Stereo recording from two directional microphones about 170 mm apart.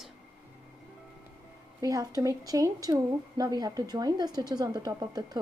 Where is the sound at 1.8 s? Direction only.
20° right (ahead or behind).